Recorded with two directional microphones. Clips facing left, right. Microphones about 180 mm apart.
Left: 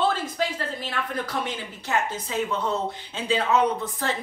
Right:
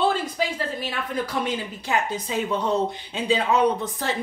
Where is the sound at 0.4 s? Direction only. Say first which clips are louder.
Right 1 dB; 10° right (ahead or behind).